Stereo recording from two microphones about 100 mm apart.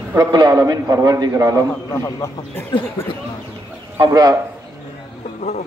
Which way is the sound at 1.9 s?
30° left (ahead or behind).